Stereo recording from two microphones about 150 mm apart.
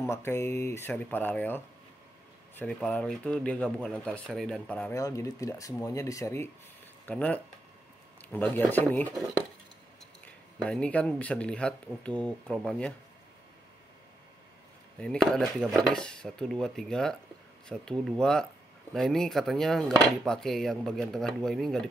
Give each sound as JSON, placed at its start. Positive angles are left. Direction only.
{"t": 0.0, "sound": "speech", "side_deg": 15}
{"t": 4.9, "sound": "speech", "side_deg": 20}
{"t": 10.2, "sound": "speech", "side_deg": 10}
{"t": 15.0, "sound": "speech", "side_deg": 5}